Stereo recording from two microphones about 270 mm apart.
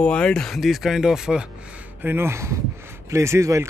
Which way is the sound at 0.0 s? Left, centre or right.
Centre.